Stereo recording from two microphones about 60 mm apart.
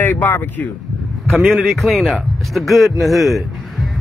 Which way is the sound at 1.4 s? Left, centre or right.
Centre.